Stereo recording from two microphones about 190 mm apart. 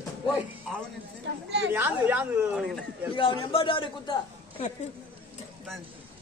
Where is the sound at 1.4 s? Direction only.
65° right (ahead or behind).